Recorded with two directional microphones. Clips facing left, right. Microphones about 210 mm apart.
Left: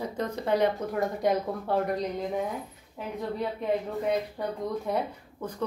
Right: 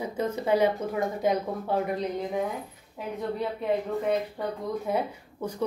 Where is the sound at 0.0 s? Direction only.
5° right (ahead or behind).